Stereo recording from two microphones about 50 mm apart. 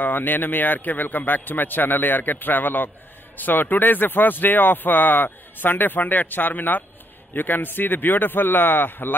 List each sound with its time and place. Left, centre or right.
0.0 s speech: left